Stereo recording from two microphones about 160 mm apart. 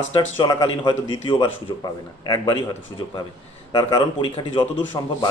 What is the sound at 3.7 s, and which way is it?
A man's voice, 25° left (ahead or behind).